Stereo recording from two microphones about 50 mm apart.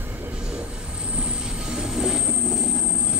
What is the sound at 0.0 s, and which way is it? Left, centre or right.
Train, right.